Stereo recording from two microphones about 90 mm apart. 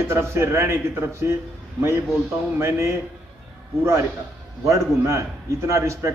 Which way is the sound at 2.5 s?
30° right (ahead or behind).